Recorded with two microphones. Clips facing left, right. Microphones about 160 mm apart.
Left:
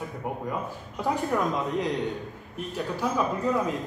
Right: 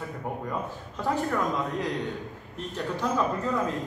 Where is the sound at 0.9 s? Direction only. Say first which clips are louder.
Left 1 dB; 15° left (ahead or behind).